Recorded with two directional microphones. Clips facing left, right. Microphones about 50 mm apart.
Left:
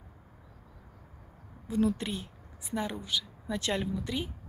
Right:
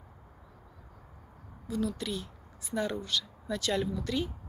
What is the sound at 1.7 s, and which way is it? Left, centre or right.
A woman's voice, left.